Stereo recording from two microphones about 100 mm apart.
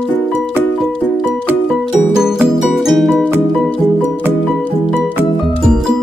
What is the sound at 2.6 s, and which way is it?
Music, centre (ahead or behind).